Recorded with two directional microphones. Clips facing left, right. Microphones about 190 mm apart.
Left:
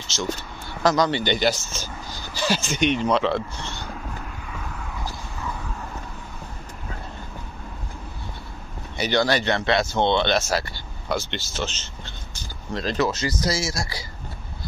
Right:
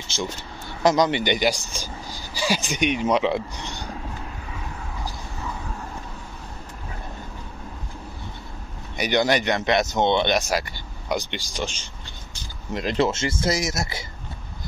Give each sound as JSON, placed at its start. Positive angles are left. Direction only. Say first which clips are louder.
{"t": 0.1, "sound": "speech", "louder": "right 1 dB", "side_deg": -55}
{"t": 0.8, "sound": "speech", "louder": "right 1 dB", "side_deg": -20}
{"t": 8.9, "sound": "speech", "louder": "right 1 dB", "side_deg": -15}